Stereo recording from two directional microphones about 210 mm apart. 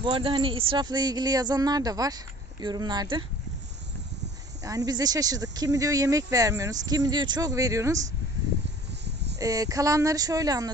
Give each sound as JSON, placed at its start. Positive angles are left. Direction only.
{"t": 0.0, "sound": "speech", "side_deg": -25}
{"t": 4.6, "sound": "speech", "side_deg": -15}
{"t": 9.0, "sound": "a sound", "side_deg": -55}
{"t": 9.4, "sound": "speech", "side_deg": -15}